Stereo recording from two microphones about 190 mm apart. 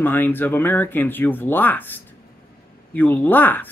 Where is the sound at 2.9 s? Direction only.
10° left (ahead or behind).